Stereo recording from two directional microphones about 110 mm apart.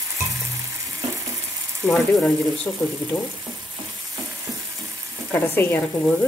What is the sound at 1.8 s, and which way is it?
Speech, 15° left (ahead or behind).